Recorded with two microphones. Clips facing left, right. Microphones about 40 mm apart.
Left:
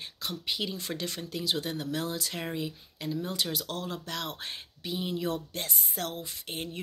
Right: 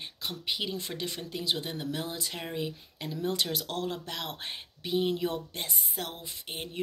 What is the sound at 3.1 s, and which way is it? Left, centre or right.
Speech, right.